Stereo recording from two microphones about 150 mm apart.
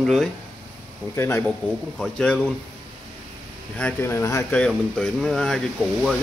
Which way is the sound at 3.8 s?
10° left (ahead or behind).